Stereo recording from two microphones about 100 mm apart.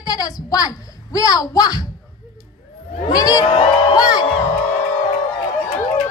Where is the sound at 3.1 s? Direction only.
40° left (ahead or behind).